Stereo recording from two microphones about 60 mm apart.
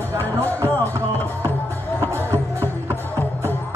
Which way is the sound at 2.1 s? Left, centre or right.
Right.